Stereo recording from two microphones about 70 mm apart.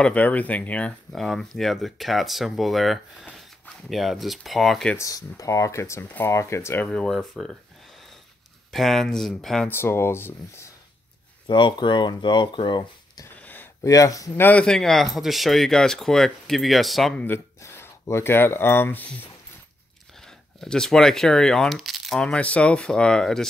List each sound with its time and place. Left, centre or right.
0.0 s speech: left
1.1 s speech: centre
4.9 s speech: left
6.9 s speech: centre
8.7 s speech: centre
9.7 s speech: left
11.4 s speech: left
13.4 s a sound: left
13.8 s speech: left
14.5 s speech: centre
14.8 s speech: centre
17.6 s speech: left
20.6 s speech: centre
22.2 s speech: centre